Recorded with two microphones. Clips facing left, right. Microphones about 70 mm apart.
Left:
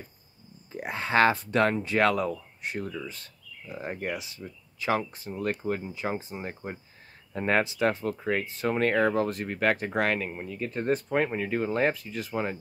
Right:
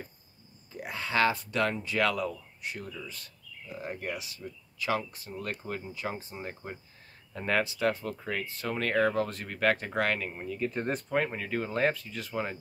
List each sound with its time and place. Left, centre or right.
0.7 s speech: left; by 12.5 s centre